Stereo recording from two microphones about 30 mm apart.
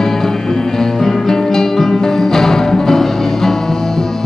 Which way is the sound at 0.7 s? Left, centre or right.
Centre.